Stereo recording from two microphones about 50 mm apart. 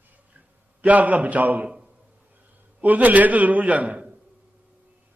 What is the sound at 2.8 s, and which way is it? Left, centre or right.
A man's voice, right.